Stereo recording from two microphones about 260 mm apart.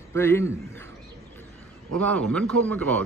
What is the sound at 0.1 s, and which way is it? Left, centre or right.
Speech, centre.